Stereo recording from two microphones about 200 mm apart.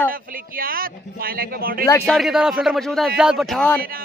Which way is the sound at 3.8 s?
45° right (ahead or behind).